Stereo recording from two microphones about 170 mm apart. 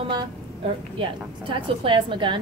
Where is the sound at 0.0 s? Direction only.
25° right (ahead or behind).